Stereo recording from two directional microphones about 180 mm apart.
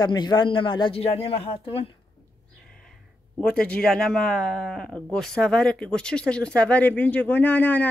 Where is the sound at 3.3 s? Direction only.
5° left (ahead or behind).